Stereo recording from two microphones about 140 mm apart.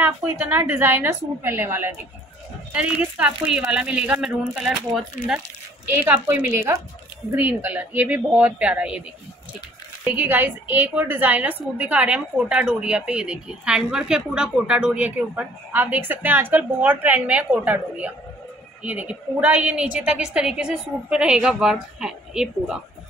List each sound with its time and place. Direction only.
0.0 s speech: 10° right (ahead or behind)
6.0 s speech: 15° right (ahead or behind)
10.0 s speech: 15° right (ahead or behind)